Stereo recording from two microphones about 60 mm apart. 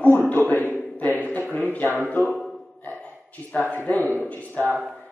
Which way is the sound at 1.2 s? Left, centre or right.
Left.